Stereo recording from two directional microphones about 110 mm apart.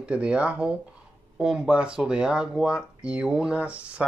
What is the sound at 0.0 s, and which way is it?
Speech, 10° right (ahead or behind).